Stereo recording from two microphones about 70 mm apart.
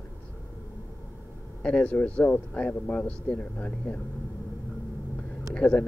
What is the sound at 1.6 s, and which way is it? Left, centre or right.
Speech, centre.